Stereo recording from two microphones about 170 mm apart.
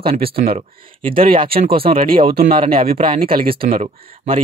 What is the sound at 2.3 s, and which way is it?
Speech, 60° right (ahead or behind).